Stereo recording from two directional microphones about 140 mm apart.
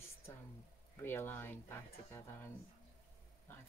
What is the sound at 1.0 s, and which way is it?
Speech, 15° left (ahead or behind).